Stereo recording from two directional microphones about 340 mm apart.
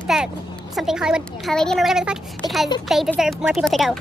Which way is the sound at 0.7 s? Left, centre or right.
Centre.